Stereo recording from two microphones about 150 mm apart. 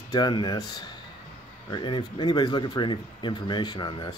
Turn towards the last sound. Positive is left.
turn(degrees=30)  # may be behind; listen again after turning